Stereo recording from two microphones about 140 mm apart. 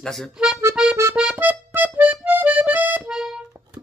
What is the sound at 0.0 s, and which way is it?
Speech, centre (ahead or behind).